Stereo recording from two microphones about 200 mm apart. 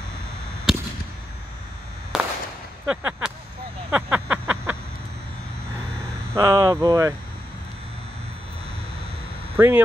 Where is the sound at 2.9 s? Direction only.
5° right (ahead or behind).